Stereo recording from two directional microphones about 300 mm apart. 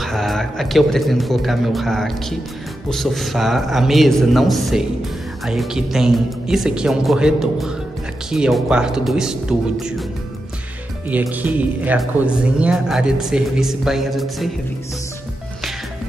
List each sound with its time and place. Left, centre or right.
0.0 s speech: centre
11.1 s speech: centre